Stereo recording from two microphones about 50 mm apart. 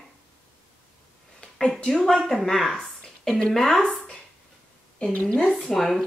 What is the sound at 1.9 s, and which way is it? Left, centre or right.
A woman's voice, centre.